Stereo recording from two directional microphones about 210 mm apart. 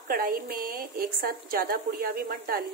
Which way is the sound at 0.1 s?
45° right (ahead or behind).